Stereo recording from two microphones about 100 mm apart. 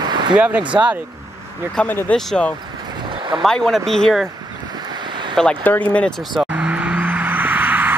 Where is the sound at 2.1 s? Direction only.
5° left (ahead or behind).